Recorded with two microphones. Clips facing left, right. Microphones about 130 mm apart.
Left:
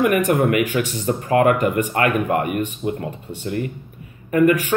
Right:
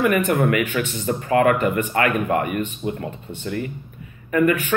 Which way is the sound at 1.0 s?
40° left (ahead or behind).